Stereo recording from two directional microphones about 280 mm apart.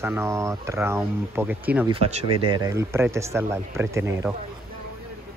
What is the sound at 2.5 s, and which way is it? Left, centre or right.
Speech, centre.